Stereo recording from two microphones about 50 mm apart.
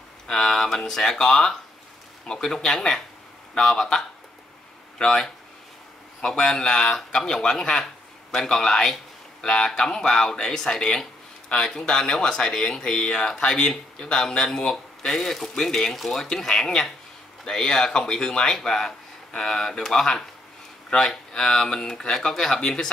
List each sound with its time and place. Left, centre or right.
0.3 s speech: centre